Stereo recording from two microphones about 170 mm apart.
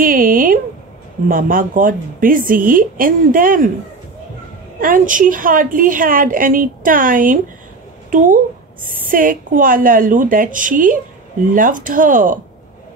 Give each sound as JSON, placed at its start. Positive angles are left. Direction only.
{"t": 0.0, "sound": "a woman's voice", "side_deg": -55}
{"t": 4.7, "sound": "a woman's voice", "side_deg": -55}